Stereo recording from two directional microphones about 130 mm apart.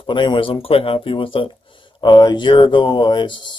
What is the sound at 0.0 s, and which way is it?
Speech, 40° left (ahead or behind).